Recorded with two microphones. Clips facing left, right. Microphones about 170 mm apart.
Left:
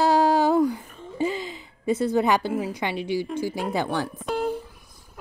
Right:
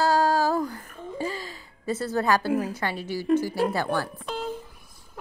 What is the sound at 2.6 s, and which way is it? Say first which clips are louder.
Speech: left 2 dB; 15° left (ahead or behind).